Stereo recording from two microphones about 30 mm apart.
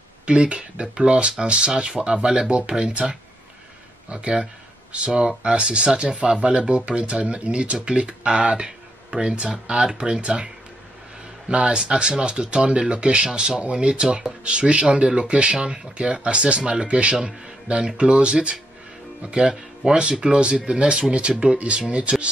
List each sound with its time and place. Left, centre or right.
0.3 s speech: right
11.4 s speech: right
13.6 s speech: right